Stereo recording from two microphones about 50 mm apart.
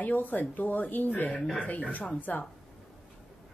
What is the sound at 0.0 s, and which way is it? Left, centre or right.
Speech, left.